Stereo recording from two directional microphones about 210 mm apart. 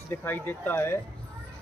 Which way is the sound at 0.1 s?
10° left (ahead or behind).